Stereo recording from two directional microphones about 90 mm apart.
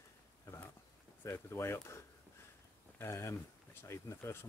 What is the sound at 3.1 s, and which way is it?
Speech, 35° left (ahead or behind).